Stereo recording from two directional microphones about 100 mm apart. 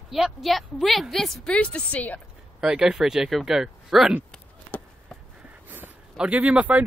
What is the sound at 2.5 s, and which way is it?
A woman's voice, 10° right (ahead or behind).